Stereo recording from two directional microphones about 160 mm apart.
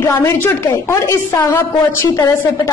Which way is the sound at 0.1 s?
20° left (ahead or behind).